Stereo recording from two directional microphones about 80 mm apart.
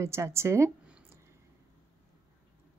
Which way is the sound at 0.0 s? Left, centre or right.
Right.